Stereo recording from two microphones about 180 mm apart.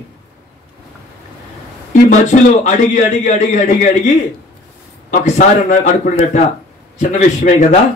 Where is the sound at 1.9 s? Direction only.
40° left (ahead or behind).